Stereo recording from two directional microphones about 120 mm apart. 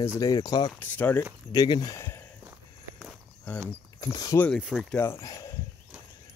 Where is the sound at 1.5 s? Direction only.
30° left (ahead or behind).